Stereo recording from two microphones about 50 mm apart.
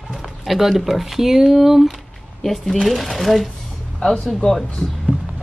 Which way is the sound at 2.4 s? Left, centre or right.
Centre.